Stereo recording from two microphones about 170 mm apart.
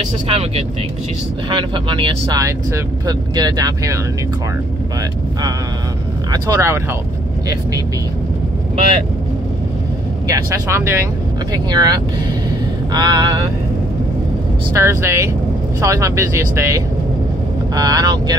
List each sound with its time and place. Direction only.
0.3 s speech: 40° right (ahead or behind); by 4.0 s 20° right (ahead or behind)
6.3 s speech: 15° right (ahead or behind)
10.2 s speech: 20° right (ahead or behind)
12.4 s a sound: 25° right (ahead or behind)
14.7 s speech: 15° right (ahead or behind)